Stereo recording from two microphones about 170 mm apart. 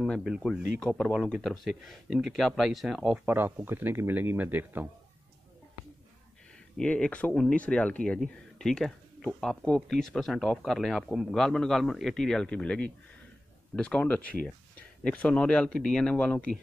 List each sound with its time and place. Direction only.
0.0 s speech: centre (ahead or behind)
6.8 s speech: 5° left (ahead or behind)